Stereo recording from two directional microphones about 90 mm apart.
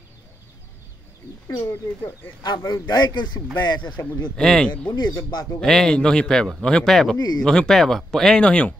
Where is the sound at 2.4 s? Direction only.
50° left (ahead or behind).